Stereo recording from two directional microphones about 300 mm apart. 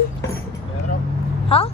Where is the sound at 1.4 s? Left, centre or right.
Centre.